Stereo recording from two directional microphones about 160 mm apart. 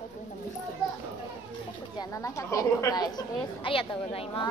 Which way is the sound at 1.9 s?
20° left (ahead or behind).